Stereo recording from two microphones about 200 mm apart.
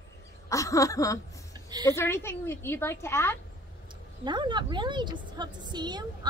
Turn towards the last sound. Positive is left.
turn(degrees=-20)  # may be behind; listen again after turning